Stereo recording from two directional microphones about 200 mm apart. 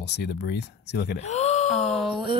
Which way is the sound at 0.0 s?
55° left (ahead or behind).